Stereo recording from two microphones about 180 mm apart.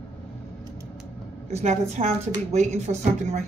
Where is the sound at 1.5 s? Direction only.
40° right (ahead or behind).